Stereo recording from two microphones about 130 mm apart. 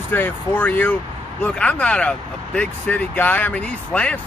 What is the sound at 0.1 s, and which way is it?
Speech, 15° left (ahead or behind).